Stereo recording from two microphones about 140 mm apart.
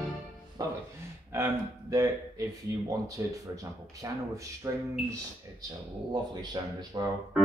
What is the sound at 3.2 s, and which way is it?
Speech, 20° right (ahead or behind).